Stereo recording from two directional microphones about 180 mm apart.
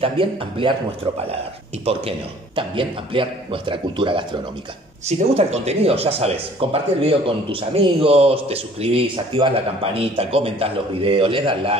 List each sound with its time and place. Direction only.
0.0 s a man's voice: 30° right (ahead or behind)
1.9 s a man's voice: 30° right (ahead or behind)